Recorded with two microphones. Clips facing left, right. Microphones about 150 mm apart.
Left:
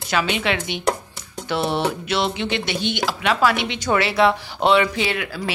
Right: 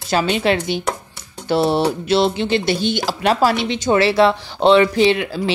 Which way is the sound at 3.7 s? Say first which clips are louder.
Right 5 dB; 20° right (ahead or behind).